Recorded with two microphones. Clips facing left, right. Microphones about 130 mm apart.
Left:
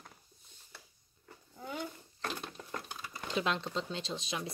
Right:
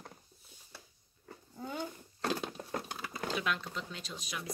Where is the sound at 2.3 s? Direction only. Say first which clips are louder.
Right 4 dB; 40° right (ahead or behind).